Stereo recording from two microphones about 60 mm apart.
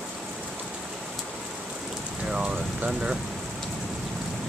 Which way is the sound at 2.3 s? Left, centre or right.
Centre.